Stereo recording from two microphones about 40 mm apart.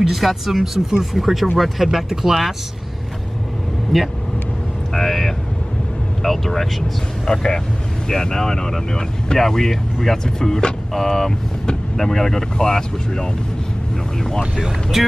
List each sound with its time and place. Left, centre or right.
0.1 s speech: centre
3.9 s speech: centre